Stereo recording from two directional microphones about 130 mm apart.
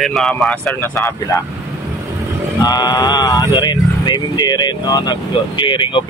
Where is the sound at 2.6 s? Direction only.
30° left (ahead or behind).